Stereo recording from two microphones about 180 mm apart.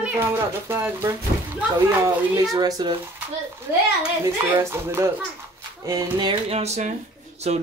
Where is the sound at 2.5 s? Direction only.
20° right (ahead or behind).